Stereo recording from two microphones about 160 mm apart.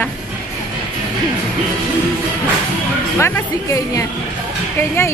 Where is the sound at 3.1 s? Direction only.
15° left (ahead or behind).